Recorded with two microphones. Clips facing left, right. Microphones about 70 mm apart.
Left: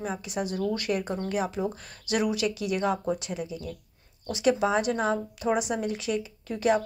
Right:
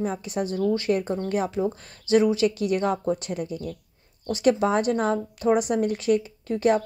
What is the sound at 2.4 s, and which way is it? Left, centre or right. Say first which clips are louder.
A woman's voice: right 4 dB; right.